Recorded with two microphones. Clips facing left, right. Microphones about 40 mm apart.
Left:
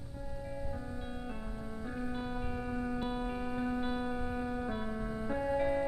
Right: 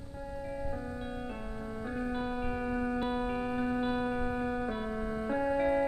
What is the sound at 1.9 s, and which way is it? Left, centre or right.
Music, centre.